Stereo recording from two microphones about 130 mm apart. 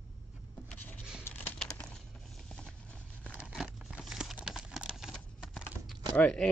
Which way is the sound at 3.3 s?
10° right (ahead or behind).